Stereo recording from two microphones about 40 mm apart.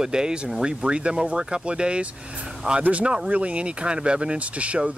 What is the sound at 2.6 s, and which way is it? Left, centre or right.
Speech, right.